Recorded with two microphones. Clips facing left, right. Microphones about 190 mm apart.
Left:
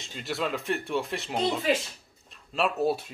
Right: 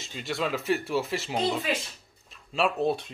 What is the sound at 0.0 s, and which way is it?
Speech, centre (ahead or behind).